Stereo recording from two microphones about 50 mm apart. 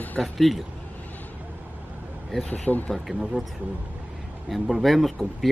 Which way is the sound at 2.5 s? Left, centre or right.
Left.